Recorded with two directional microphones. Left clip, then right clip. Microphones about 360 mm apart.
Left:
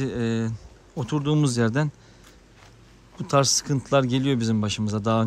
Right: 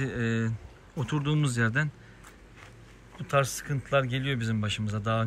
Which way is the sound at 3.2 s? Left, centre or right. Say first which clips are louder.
Left 6 dB; centre.